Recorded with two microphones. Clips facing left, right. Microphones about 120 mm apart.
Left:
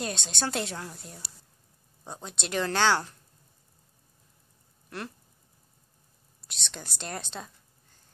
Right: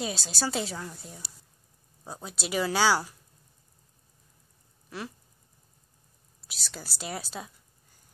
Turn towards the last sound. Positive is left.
turn(degrees=-5)  # may be behind; listen again after turning